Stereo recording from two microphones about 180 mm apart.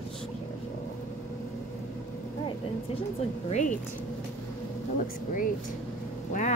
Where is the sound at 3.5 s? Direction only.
45° left (ahead or behind).